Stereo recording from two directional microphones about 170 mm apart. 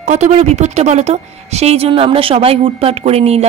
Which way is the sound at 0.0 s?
40° right (ahead or behind).